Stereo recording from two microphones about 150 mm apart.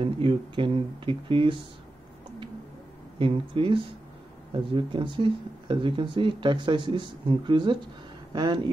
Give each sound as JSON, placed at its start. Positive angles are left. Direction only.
{"t": 0.0, "sound": "speech", "side_deg": -35}
{"t": 3.2, "sound": "speech", "side_deg": -35}